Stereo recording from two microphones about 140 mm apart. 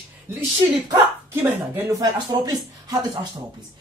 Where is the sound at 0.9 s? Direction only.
20° right (ahead or behind).